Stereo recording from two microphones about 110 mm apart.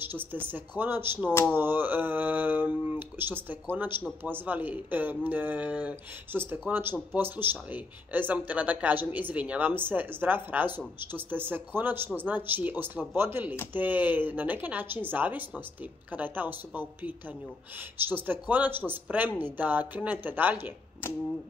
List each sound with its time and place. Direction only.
0.1 s speech: 20° right (ahead or behind)